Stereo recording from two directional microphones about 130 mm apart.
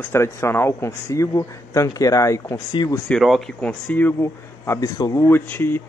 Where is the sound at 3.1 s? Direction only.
Centre (ahead or behind).